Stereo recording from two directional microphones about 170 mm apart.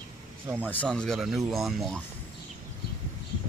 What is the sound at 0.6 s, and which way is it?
Speech, 10° left (ahead or behind).